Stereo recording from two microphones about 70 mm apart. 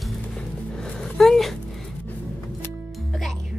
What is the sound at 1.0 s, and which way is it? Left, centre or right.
Speech, centre.